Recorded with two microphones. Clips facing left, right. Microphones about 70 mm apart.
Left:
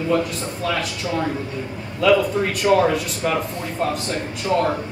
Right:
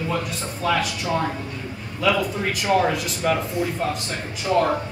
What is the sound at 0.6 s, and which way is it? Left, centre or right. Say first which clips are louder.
Speech: right 2 dB; centre.